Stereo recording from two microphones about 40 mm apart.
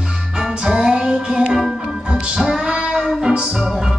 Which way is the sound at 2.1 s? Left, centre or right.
Right.